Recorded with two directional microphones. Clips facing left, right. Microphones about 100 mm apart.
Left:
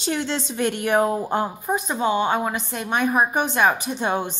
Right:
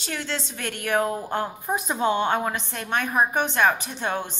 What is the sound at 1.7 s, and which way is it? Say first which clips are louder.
A woman's voice: left 1 dB; centre (ahead or behind).